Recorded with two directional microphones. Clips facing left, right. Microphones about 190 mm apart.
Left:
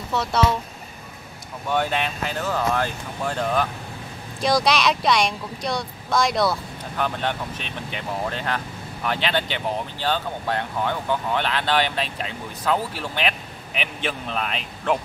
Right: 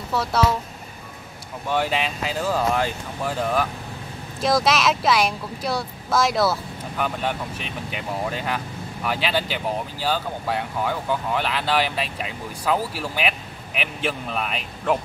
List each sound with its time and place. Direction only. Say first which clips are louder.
0.1 s speech: even; 5° right (ahead or behind)
1.7 s speech: even; 5° right (ahead or behind)